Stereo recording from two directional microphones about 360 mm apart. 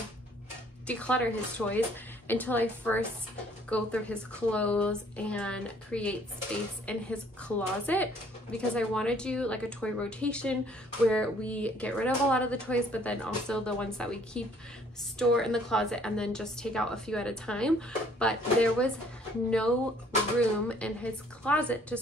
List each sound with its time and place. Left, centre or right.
0.8 s speech: centre
20.3 s speech: centre